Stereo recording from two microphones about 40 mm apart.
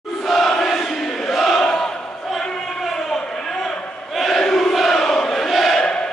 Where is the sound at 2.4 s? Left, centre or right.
Centre.